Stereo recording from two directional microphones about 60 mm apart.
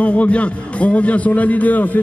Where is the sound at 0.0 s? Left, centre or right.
Left.